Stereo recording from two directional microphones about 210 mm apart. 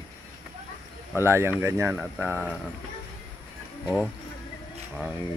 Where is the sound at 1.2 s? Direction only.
10° right (ahead or behind).